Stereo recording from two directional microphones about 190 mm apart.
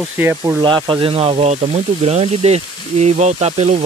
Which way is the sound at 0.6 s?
25° right (ahead or behind).